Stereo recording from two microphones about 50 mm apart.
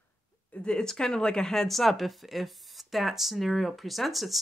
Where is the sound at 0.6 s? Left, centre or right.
Centre.